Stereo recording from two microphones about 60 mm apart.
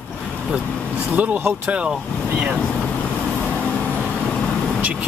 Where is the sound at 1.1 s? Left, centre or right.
Right.